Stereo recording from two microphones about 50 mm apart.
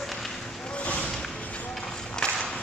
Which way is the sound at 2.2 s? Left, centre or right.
Left.